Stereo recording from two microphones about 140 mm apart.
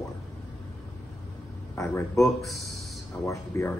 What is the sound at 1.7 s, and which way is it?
Speech, 20° left (ahead or behind).